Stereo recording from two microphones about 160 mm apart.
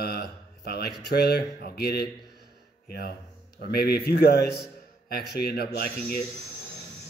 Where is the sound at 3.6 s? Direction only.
80° left.